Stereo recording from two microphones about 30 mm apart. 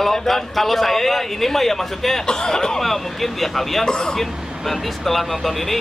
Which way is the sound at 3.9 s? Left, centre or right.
Left.